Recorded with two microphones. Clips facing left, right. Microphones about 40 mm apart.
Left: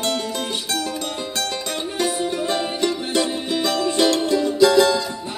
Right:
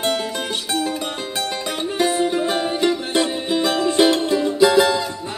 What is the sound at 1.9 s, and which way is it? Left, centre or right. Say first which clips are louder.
Music: right 4 dB; centre.